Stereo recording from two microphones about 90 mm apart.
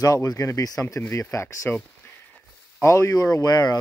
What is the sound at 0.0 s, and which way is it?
Speech, 40° left (ahead or behind).